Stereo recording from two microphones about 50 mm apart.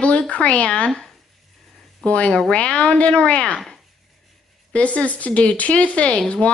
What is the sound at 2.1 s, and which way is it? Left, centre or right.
Speech, left.